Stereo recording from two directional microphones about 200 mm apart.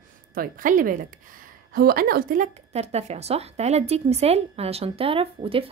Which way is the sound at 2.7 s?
30° right (ahead or behind).